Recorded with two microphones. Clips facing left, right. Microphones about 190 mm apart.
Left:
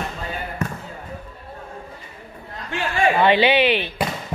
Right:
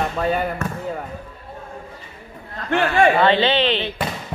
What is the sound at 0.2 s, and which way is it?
Speech, 75° right (ahead or behind).